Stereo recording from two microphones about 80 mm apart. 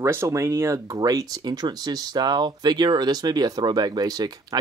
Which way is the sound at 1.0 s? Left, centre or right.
Right.